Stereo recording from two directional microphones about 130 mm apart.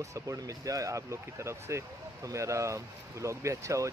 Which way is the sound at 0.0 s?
25° right (ahead or behind).